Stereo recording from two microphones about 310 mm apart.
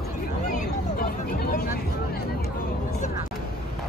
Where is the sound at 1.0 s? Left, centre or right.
Left.